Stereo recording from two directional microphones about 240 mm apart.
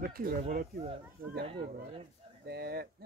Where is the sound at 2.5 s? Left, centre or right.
Right.